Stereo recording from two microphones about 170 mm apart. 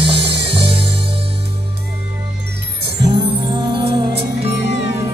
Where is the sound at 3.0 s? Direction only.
30° right (ahead or behind).